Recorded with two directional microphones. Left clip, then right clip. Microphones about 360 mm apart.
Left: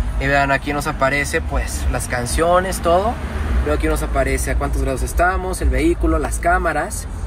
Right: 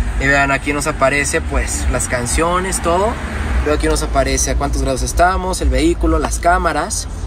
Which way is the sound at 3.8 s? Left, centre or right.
Right.